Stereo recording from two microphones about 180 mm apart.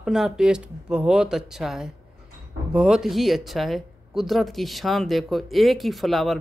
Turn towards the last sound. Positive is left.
turn(degrees=0)  # may be behind; listen again after turning